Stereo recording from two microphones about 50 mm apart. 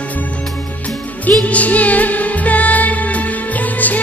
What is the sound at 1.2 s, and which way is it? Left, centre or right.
Music, left.